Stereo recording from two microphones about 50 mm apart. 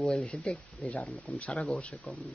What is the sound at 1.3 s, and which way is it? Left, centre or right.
Speech, left.